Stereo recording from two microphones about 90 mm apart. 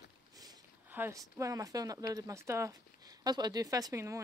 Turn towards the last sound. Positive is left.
turn(degrees=-30)  # may be behind; listen again after turning